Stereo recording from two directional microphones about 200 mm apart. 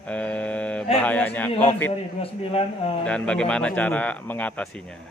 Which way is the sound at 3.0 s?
5° left (ahead or behind).